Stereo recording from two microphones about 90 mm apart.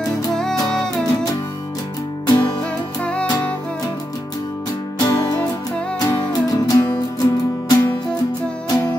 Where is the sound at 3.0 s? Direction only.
10° left (ahead or behind).